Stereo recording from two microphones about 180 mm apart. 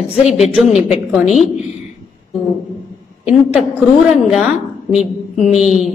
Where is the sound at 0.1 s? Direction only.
35° left (ahead or behind).